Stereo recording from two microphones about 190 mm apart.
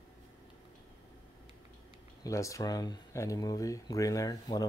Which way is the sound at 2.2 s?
15° left (ahead or behind).